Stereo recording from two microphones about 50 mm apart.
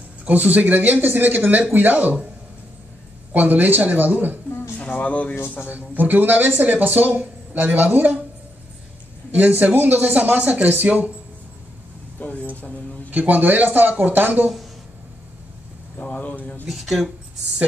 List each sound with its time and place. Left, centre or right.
0.2 s speech: right
3.3 s speech: right
4.7 s speech: left
5.7 s speech: right
9.3 s speech: right
12.2 s speech: left
13.1 s speech: right
16.0 s a sound: left
16.7 s speech: centre